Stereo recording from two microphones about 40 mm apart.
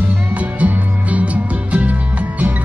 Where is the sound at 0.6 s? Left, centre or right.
Right.